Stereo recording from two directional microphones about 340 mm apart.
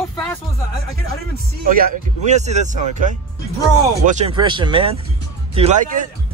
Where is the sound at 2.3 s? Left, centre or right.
Centre.